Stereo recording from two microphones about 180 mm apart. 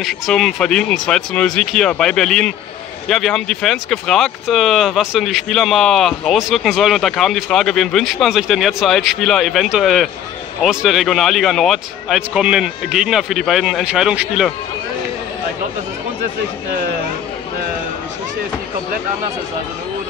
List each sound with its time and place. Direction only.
0.0 s speech: centre (ahead or behind)